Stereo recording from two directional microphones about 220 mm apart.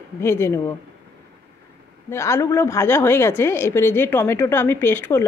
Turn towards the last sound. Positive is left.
turn(degrees=10)  # may be behind; listen again after turning